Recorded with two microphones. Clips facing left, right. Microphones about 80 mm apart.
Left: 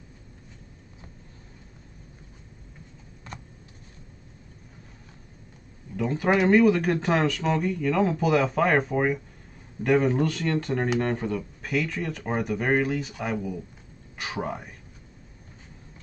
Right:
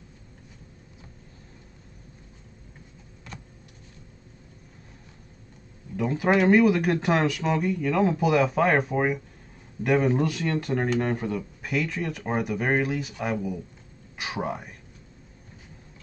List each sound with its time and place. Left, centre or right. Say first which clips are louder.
5.9 s speech: right 1 dB; centre